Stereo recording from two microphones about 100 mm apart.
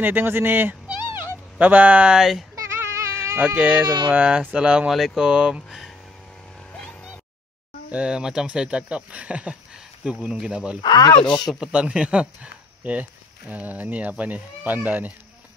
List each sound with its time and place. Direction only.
0.0 s speech: 20° right (ahead or behind); by 2.4 s 5° right (ahead or behind)
2.5 s goat: 25° right (ahead or behind)
4.1 s speech: 15° right (ahead or behind)
7.9 s speech: 10° right (ahead or behind)
10.8 s speech: 45° left (ahead or behind)
11.4 s speech: 10° right (ahead or behind)